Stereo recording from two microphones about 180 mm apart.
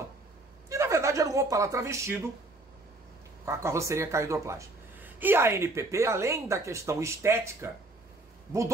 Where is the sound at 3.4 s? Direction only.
15° right (ahead or behind).